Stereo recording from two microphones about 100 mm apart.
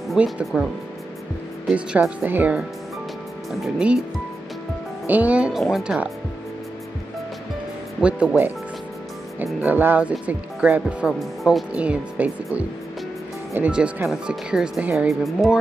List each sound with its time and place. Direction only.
0.2 s speech: 10° right (ahead or behind)
3.6 s speech: 5° right (ahead or behind)
5.0 s speech: 15° right (ahead or behind)
5.5 s speech: centre (ahead or behind)
8.0 s speech: 10° right (ahead or behind)
9.6 s speech: 20° right (ahead or behind)
11.1 s speech: centre (ahead or behind)
11.7 s speech: 10° right (ahead or behind)
13.7 s speech: 10° right (ahead or behind)